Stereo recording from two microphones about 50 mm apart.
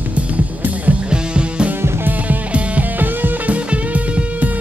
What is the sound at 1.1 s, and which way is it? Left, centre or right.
Music, centre.